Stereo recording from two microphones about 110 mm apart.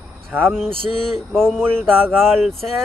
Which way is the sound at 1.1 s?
5° left (ahead or behind).